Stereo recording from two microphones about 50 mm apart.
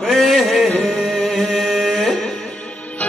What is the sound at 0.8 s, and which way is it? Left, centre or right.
Music, centre.